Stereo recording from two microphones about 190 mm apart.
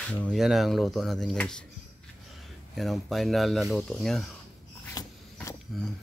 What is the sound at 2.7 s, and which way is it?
Speech, centre (ahead or behind).